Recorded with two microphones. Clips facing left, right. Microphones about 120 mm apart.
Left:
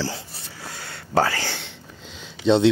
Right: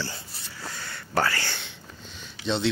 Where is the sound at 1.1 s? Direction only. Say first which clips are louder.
Left 5 dB; 90° left.